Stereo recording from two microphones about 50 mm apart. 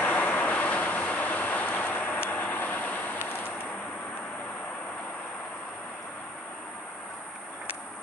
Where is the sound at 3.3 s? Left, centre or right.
Left.